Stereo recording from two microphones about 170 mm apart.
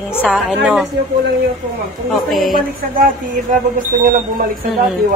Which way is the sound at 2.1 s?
Centre (ahead or behind).